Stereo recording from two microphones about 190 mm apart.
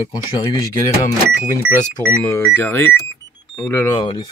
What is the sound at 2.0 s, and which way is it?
Speech, 15° left (ahead or behind).